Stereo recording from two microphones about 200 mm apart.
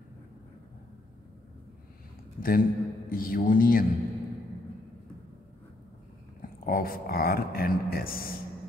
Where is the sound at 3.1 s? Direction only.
45° left (ahead or behind).